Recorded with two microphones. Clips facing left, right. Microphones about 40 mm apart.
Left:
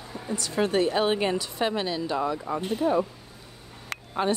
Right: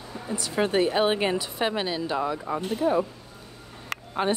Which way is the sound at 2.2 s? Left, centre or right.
Centre.